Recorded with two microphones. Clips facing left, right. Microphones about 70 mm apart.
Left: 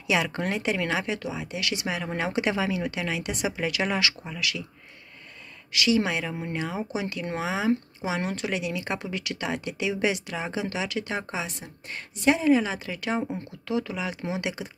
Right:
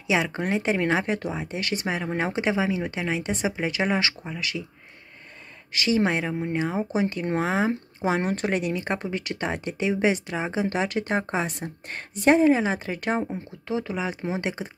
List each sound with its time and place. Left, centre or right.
0.0 s speech: right
5.7 s speech: right
6.4 s speech: centre
6.9 s speech: right